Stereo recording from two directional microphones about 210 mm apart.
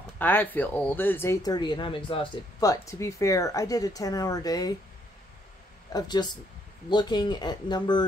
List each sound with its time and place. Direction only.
0.2 s speech: 10° left (ahead or behind)
5.9 s speech: 20° left (ahead or behind)